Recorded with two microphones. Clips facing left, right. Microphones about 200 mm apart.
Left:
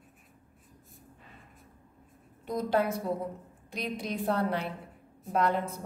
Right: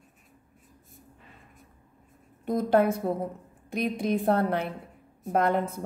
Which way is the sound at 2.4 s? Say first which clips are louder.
Right 6 dB; 50° right (ahead or behind).